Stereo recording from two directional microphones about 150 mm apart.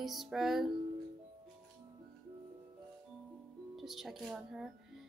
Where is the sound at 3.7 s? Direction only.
Centre (ahead or behind).